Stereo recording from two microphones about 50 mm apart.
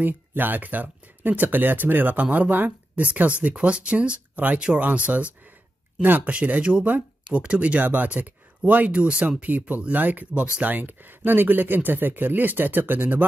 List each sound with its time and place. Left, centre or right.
0.0 s speech: right
6.0 s speech: right
6.3 s speech: right
10.7 s speech: right